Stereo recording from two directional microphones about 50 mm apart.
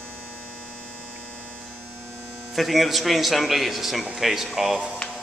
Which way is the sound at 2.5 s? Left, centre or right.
Centre.